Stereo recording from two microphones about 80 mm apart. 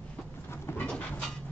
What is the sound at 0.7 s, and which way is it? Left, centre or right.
Train, left.